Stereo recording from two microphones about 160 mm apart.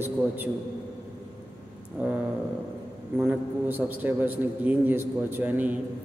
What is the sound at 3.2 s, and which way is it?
A man's voice, 10° right (ahead or behind).